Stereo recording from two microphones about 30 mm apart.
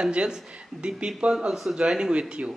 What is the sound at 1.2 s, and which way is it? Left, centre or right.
Speech, right.